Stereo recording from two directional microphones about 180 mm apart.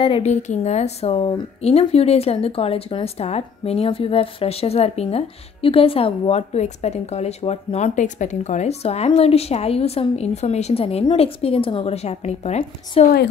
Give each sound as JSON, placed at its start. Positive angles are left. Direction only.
{"t": 0.0, "sound": "speech", "side_deg": 35}